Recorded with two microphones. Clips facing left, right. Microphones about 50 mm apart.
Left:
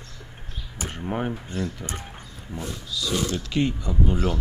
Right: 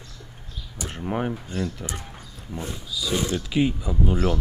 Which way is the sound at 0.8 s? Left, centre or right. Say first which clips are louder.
Left 1 dB; left.